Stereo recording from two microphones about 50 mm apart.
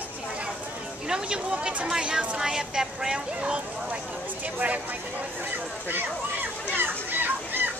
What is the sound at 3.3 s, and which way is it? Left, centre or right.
Speech, right.